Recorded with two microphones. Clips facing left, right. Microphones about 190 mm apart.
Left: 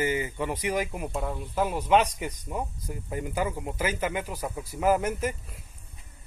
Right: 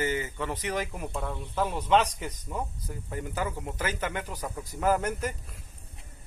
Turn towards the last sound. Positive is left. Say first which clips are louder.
# left 3 dB
turn(degrees=10)  # may be behind; listen again after turning